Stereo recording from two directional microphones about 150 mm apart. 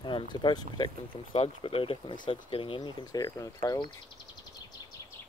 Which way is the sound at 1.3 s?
40° left (ahead or behind).